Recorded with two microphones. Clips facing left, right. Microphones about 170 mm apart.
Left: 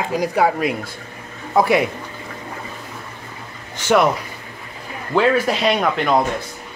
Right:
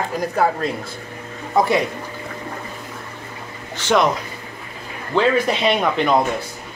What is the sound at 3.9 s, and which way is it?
Speech, 10° left (ahead or behind).